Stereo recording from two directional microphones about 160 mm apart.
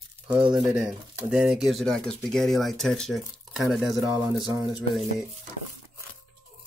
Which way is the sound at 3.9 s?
20° right (ahead or behind).